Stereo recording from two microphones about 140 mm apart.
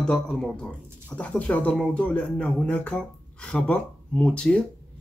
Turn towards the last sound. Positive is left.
turn(degrees=5)  # may be behind; listen again after turning